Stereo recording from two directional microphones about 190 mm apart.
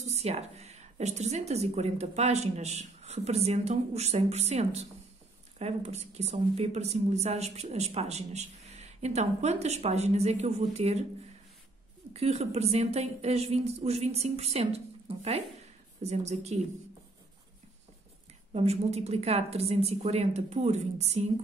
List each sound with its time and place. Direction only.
0.0 s speech: 35° right (ahead or behind)
12.1 s speech: 35° right (ahead or behind)
18.5 s speech: 35° right (ahead or behind)